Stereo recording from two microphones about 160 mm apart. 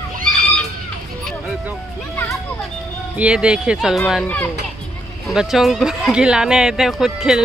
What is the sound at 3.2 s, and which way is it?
Speech, 5° right (ahead or behind).